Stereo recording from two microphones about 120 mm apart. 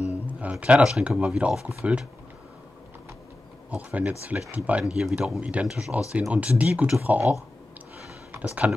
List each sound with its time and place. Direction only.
0.1 s speech: 10° right (ahead or behind)
3.7 s speech: 10° right (ahead or behind)
8.6 s speech: 10° right (ahead or behind)